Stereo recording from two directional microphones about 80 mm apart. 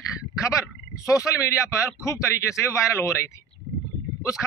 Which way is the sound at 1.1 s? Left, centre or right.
Left.